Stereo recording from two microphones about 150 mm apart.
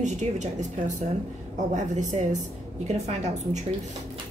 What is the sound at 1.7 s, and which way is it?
A woman's voice, 50° right (ahead or behind).